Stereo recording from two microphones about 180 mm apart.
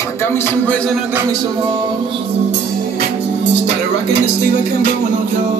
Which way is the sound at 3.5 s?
70° right (ahead or behind).